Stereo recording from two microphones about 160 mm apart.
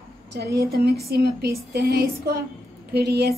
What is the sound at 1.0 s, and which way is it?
A woman's voice, 85° right.